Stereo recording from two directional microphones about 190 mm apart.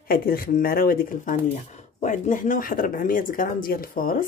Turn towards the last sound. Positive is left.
turn(degrees=50)  # may be behind; listen again after turning